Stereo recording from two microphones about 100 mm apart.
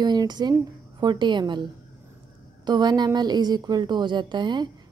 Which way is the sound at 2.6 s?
45° right (ahead or behind).